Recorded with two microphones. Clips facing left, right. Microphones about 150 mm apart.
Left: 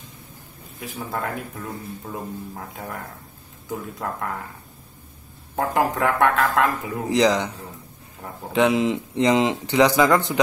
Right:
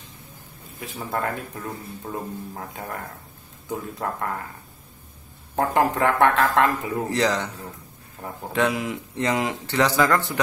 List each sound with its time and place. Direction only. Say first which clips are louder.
0.9 s speech: right 1 dB; centre (ahead or behind)
5.6 s speech: right 1 dB; centre (ahead or behind)
7.1 s speech: left 6 dB; 15° left (ahead or behind)
8.5 s speech: left 5 dB; 20° left (ahead or behind)